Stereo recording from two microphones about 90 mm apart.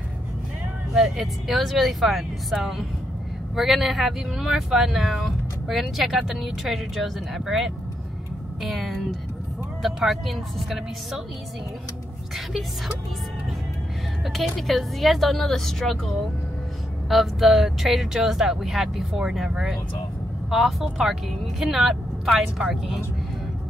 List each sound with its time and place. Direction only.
0.9 s speech: 5° right (ahead or behind)
14.3 s speech: centre (ahead or behind)